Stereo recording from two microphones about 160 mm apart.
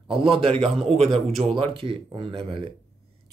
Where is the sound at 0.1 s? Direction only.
35° right (ahead or behind).